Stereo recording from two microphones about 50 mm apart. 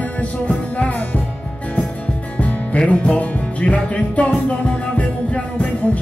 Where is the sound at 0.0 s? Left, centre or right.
Left.